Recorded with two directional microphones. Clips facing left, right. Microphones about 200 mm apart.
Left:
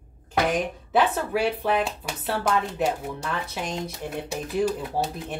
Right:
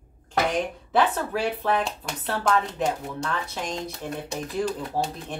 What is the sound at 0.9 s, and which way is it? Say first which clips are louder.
Speech: left 1 dB; 10° left (ahead or behind).